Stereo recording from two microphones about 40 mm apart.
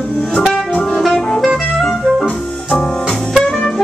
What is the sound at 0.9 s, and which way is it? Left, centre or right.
Music, centre.